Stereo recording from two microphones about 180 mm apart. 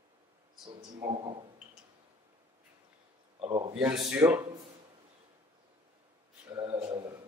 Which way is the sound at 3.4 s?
30° right (ahead or behind).